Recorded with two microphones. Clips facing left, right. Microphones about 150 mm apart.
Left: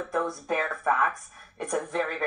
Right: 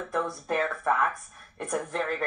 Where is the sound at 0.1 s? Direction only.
5° left (ahead or behind).